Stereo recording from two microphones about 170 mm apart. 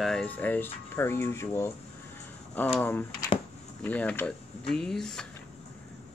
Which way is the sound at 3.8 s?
10° left (ahead or behind).